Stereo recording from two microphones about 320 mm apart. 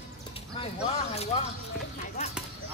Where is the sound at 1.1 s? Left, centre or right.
Centre.